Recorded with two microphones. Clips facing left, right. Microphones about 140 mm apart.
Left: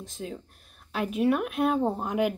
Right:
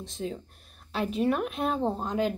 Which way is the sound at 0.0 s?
5° left (ahead or behind).